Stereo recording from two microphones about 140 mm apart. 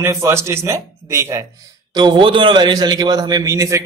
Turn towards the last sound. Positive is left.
turn(degrees=-20)  # may be behind; listen again after turning